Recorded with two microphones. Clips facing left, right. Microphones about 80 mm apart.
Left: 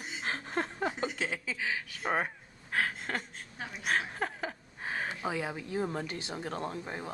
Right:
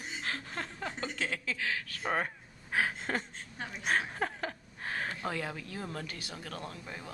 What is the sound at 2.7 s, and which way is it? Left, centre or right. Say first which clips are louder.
Speech: right 1 dB; centre.